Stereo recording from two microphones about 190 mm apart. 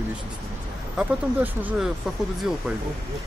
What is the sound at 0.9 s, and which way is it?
Speech, 10° right (ahead or behind).